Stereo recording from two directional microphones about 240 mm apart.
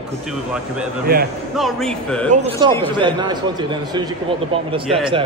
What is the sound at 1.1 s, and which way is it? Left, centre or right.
Speech, right.